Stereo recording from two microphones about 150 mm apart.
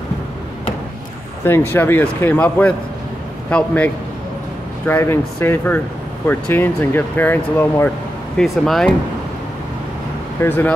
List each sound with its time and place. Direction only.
1.4 s speech: 15° left (ahead or behind)
8.4 s speech: 5° left (ahead or behind)
10.4 s speech: 15° left (ahead or behind)